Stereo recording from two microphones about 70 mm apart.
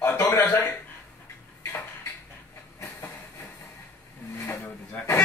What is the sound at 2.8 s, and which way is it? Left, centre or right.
Train, left.